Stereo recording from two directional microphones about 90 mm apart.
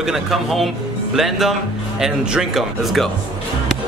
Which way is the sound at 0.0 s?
5° right (ahead or behind).